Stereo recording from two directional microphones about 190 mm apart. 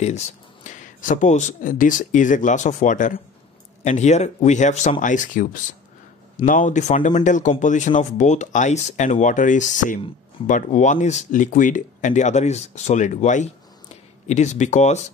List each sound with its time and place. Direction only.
0.7 s a man's voice: 40° left (ahead or behind)